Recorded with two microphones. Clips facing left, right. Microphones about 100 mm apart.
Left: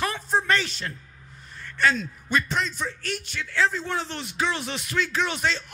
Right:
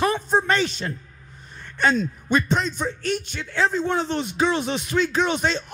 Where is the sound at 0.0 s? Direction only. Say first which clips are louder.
Right 5 dB; 20° right (ahead or behind).